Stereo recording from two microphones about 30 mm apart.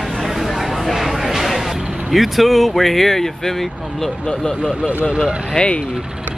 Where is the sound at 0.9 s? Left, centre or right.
Centre.